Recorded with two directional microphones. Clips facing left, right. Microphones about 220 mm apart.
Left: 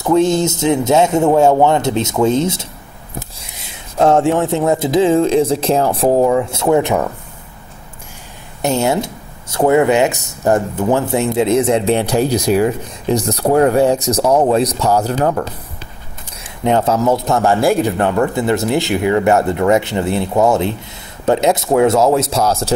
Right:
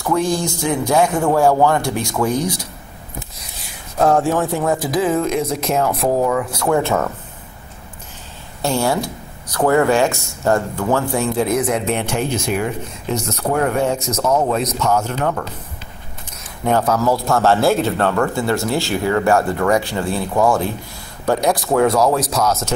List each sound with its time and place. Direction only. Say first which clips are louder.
0.0 s a man's voice: left 6 dB; 20° left (ahead or behind)
8.6 s a man's voice: left 3 dB; 20° left (ahead or behind)
16.6 s a man's voice: left 3 dB; 25° left (ahead or behind)